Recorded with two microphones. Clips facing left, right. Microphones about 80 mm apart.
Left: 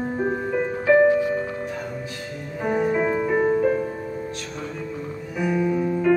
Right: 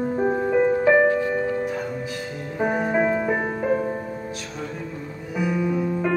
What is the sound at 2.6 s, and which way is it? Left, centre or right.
Music, centre.